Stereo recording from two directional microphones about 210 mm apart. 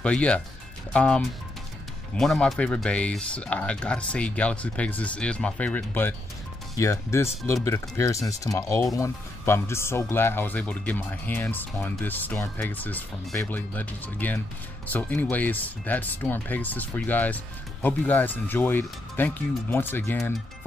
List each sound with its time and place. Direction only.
0.0 s speech: 5° left (ahead or behind)